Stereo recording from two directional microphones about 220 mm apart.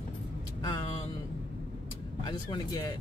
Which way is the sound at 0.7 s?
25° left (ahead or behind).